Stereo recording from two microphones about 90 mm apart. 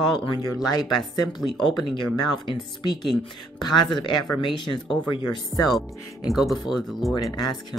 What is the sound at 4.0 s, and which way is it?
Speech, 60° left (ahead or behind).